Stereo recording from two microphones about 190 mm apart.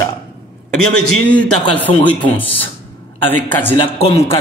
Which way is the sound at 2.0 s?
10° left (ahead or behind).